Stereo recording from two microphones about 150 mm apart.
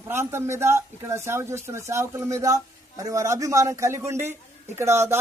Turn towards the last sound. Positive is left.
turn(degrees=-15)  # may be behind; listen again after turning